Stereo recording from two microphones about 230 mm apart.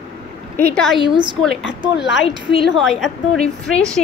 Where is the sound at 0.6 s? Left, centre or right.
Centre.